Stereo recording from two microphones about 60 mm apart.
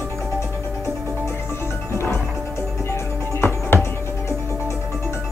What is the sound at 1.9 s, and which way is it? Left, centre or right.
Music, left.